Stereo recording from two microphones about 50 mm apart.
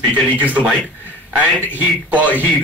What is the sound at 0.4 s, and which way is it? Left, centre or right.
Speech, right.